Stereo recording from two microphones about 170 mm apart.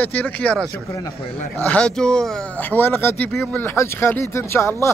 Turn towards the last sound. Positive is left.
turn(degrees=15)  # may be behind; listen again after turning